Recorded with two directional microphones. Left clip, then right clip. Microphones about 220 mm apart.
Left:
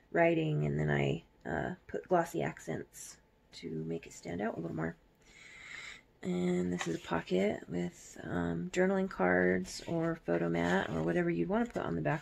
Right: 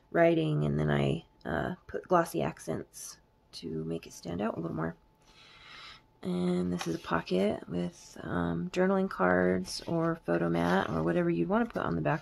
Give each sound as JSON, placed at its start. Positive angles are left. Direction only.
{"t": 0.1, "sound": "speech", "side_deg": -15}